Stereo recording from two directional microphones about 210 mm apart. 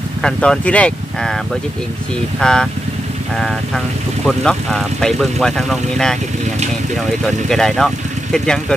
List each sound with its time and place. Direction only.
0.2 s speech: 5° left (ahead or behind)
2.4 s speech: 5° left (ahead or behind)